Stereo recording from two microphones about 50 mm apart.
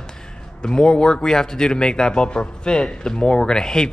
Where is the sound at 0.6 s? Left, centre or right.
Centre.